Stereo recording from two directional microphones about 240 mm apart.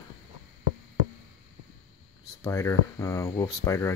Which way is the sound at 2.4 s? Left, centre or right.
Centre.